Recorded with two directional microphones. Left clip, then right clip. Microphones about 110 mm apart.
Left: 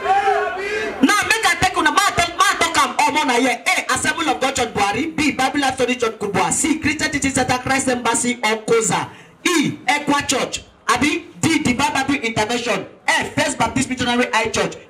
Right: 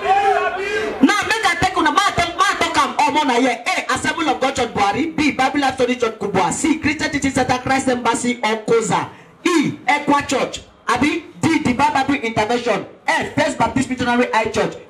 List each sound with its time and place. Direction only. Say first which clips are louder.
1.0 s speech: left 1 dB; 15° left (ahead or behind)